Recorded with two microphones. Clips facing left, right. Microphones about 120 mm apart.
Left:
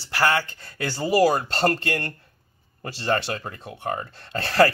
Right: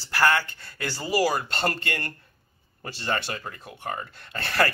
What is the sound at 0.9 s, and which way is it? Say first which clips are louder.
Speech: left 5 dB; 25° left (ahead or behind).